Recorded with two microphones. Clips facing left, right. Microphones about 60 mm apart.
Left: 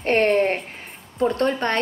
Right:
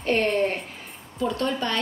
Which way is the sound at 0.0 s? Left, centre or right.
Left.